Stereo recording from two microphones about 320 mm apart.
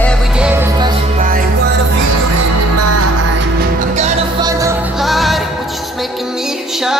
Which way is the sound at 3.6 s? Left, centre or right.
Right.